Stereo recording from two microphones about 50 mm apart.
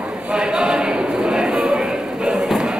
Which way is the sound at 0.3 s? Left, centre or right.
Centre.